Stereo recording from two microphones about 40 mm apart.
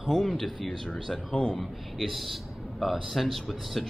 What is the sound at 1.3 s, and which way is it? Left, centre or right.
Speech, centre.